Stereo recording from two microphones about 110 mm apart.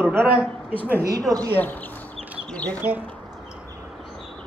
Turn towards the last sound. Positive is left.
turn(degrees=-15)  # may be behind; listen again after turning